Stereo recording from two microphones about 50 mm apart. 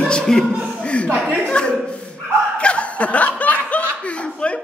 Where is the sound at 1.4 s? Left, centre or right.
Left.